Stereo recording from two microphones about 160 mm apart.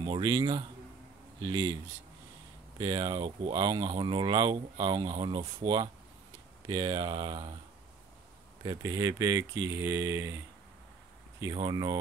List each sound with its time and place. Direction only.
0.0 s speech: 30° right (ahead or behind)
2.8 s speech: 30° right (ahead or behind)
8.6 s speech: 25° right (ahead or behind)
11.4 s speech: 25° right (ahead or behind)